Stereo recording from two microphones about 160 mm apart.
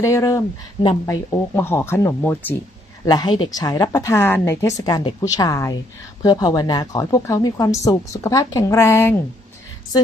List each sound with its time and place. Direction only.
0.0 s a woman's voice: 20° left (ahead or behind)
3.1 s a woman's voice: 25° left (ahead or behind)